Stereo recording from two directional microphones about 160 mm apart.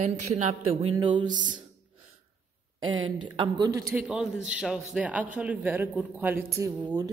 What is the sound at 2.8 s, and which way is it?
A woman's voice, 30° right (ahead or behind).